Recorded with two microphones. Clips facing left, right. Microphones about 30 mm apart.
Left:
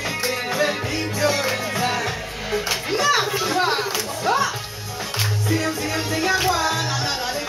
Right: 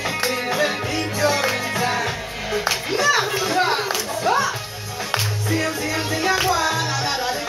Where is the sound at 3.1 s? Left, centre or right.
Centre.